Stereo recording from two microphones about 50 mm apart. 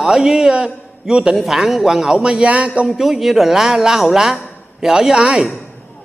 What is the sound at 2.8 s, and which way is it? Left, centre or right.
A man's voice, centre.